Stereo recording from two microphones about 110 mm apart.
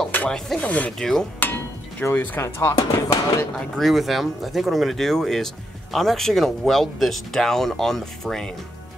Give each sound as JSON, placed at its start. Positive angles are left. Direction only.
{"t": 0.1, "sound": "rub", "side_deg": 15}
{"t": 0.6, "sound": "speech", "side_deg": 15}
{"t": 1.4, "sound": "speech", "side_deg": 15}
{"t": 3.5, "sound": "speech", "side_deg": 0}